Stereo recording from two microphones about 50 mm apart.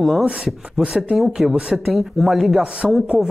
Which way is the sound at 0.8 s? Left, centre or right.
Centre.